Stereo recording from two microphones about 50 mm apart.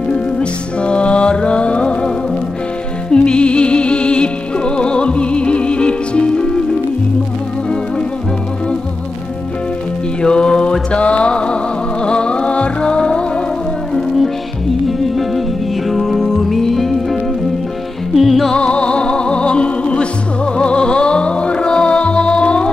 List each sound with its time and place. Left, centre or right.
0.1 s music: left
10.2 s mantra: centre
12.0 s music: centre
13.9 s music: centre
18.5 s music: left